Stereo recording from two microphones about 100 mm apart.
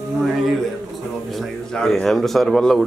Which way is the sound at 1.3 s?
5° left (ahead or behind).